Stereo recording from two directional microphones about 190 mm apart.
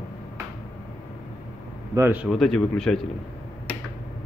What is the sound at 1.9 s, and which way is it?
Speech, 10° right (ahead or behind).